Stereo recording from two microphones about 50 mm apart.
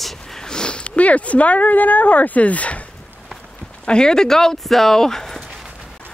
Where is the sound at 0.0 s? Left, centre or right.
Centre; by 2.8 s left.